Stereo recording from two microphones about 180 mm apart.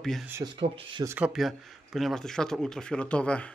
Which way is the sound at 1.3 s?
Centre (ahead or behind).